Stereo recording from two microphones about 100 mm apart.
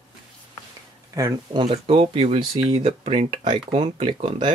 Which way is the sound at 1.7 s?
75° right (ahead or behind).